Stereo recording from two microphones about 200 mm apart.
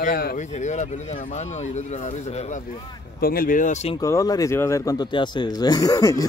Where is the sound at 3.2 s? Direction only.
45° left (ahead or behind).